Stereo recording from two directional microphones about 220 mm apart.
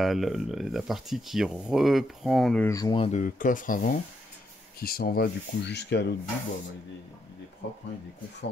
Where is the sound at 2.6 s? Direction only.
15° left (ahead or behind); by 6.0 s 50° left (ahead or behind).